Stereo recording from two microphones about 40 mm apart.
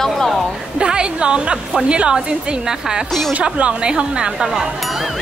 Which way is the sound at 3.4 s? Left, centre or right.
Right.